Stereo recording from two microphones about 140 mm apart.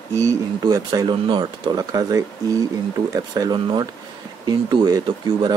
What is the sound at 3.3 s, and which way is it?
Speech, 30° right (ahead or behind).